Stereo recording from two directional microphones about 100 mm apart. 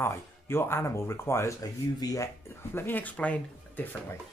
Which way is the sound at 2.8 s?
20° left (ahead or behind).